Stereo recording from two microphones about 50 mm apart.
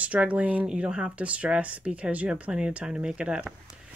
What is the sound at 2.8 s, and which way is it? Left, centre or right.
Speech, centre.